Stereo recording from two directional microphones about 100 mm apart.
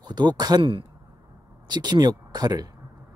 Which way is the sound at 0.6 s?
60° right (ahead or behind).